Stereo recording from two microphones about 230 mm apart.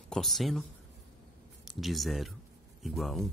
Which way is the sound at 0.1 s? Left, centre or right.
Centre.